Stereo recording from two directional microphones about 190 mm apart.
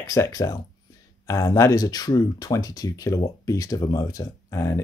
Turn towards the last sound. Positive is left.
turn(degrees=15)  # may be behind; listen again after turning